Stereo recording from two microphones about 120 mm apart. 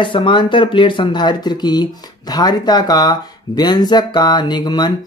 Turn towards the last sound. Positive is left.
turn(degrees=35)  # may be behind; listen again after turning